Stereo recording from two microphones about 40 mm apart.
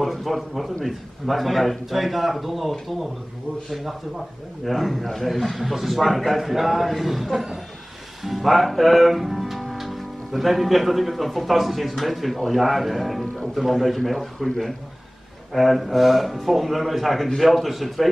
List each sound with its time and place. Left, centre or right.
0.0 s a man's voice: centre
4.6 s a man's voice: centre
8.2 s music: centre
11.9 s a man's voice: centre
15.5 s a man's voice: centre